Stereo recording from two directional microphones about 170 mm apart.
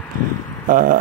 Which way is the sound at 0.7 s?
55° right (ahead or behind).